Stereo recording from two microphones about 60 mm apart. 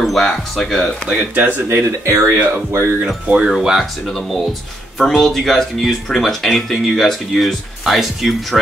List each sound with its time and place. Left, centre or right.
0.0 s speech: centre
1.3 s speech: right
1.7 s speech: right
3.3 s speech: centre
3.5 s speech: centre
5.0 s speech: centre